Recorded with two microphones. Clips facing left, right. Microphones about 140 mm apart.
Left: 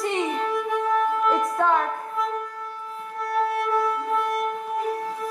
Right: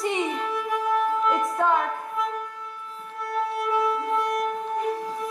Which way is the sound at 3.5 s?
Centre (ahead or behind).